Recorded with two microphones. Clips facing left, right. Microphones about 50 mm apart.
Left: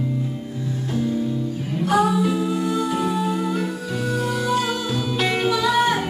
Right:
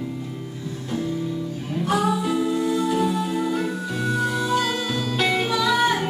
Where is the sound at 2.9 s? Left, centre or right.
Centre.